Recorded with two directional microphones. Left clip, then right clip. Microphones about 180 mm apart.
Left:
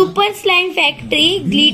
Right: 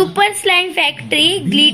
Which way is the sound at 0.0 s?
Centre (ahead or behind).